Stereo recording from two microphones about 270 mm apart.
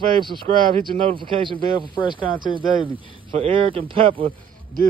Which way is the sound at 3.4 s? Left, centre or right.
Centre.